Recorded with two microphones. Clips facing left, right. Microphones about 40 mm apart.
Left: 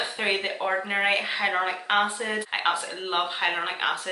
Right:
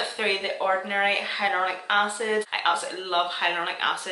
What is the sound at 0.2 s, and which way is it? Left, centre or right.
Speech, centre.